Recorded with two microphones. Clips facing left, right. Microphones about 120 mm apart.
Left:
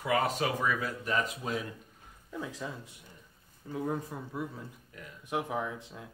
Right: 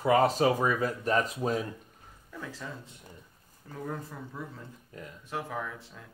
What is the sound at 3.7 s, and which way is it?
Speech, 15° left (ahead or behind).